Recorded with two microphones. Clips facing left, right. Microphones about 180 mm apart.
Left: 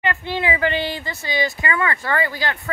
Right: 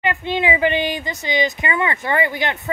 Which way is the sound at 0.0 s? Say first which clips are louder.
Right 3 dB; 20° right (ahead or behind).